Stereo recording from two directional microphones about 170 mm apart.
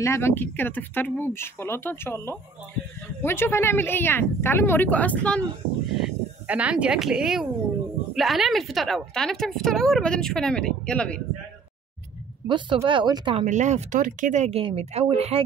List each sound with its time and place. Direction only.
0.0 s speech: 15° left (ahead or behind)
5.9 s a woman's voice: 5° right (ahead or behind)
12.4 s speech: 30° right (ahead or behind)
13.5 s speech: 45° right (ahead or behind)